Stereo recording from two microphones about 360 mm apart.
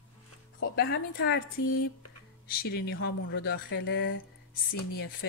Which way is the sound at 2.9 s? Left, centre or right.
Left.